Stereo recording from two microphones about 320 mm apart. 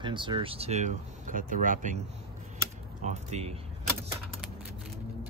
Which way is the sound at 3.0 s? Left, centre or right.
Centre.